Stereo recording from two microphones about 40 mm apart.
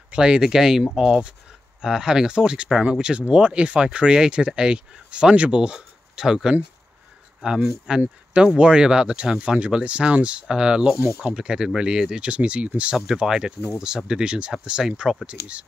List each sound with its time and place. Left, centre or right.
0.1 s speech: right
7.4 s speech: right
12.9 s speech: centre
13.2 s speech: right
15.2 s speech: right